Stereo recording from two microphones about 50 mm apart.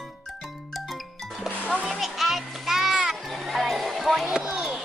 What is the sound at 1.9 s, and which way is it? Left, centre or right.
Children playing, centre.